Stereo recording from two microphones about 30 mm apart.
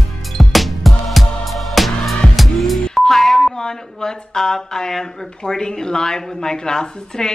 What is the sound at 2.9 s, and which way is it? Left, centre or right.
Music, centre.